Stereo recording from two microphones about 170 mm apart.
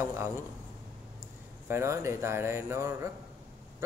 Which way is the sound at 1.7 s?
15° right (ahead or behind).